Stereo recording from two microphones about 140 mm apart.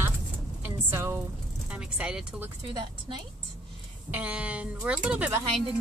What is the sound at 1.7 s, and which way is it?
Speech, 10° right (ahead or behind).